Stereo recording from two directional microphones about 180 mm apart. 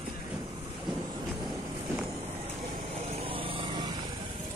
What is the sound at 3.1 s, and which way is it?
Vehicle, 30° right (ahead or behind).